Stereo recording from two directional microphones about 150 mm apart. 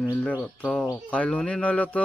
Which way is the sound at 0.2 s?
5° left (ahead or behind).